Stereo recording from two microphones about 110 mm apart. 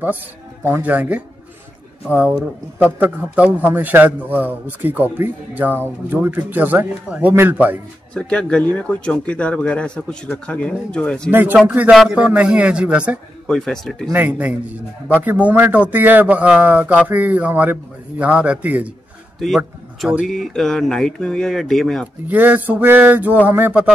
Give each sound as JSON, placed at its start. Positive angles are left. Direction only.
{"t": 0.7, "sound": "a man's voice", "side_deg": -15}
{"t": 8.1, "sound": "speech", "side_deg": 10}
{"t": 11.2, "sound": "a man's voice", "side_deg": -20}
{"t": 13.5, "sound": "speech", "side_deg": 5}
{"t": 14.1, "sound": "a man's voice", "side_deg": -15}
{"t": 19.4, "sound": "a man's voice", "side_deg": 0}
{"t": 22.3, "sound": "a man's voice", "side_deg": -15}